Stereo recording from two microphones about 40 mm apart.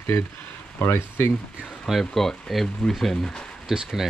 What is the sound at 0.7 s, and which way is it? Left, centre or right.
Speech, left.